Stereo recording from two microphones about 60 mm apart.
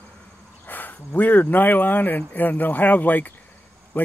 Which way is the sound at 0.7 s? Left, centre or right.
Left.